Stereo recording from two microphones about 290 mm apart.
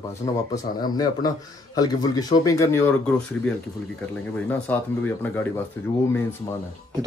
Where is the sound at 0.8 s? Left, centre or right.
Centre.